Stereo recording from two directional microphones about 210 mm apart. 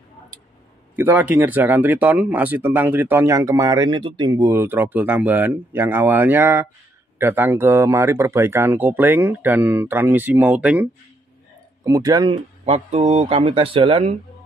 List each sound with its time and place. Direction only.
0.9 s speech: 10° right (ahead or behind)
12.6 s speech: 30° right (ahead or behind)